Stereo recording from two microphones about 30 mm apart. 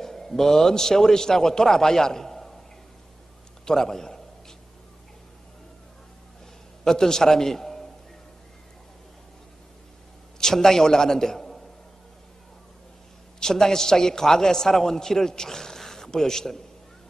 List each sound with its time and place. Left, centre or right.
0.0 s a man's voice: centre
3.6 s a sound: centre
6.8 s a man's voice: centre
10.4 s a man's voice: centre
13.4 s a man's voice: centre